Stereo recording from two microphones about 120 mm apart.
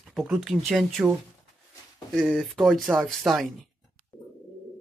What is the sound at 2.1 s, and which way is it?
Speech, centre (ahead or behind).